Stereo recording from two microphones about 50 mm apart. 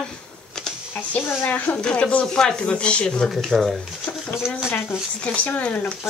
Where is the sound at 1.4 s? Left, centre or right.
Left.